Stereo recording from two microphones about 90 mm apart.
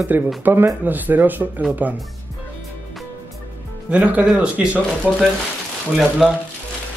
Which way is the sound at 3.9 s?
15° right (ahead or behind).